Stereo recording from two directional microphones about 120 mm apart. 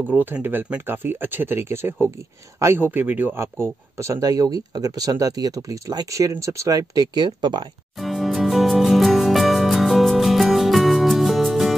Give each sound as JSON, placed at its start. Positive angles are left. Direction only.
{"t": 0.1, "sound": "speech", "side_deg": -15}
{"t": 8.0, "sound": "music", "side_deg": 0}